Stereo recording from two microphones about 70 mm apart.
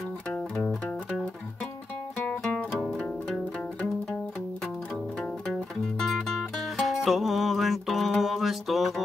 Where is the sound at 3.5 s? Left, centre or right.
Centre.